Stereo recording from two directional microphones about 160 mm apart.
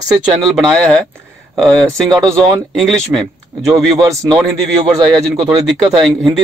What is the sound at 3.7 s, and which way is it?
Speech, 20° right (ahead or behind).